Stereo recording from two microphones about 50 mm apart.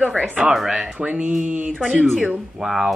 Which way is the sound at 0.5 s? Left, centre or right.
Centre.